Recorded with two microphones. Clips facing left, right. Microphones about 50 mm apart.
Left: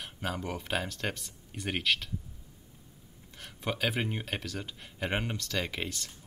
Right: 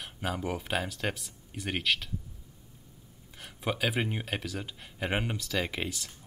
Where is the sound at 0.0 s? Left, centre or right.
Centre.